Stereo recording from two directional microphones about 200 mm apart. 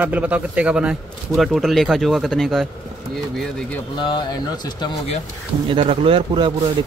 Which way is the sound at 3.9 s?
25° left (ahead or behind).